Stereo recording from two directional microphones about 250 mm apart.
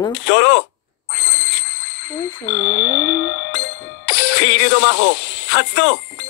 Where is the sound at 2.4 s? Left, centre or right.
Left.